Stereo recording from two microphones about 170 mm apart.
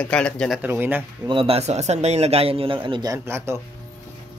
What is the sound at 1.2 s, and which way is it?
Speech, 30° right (ahead or behind).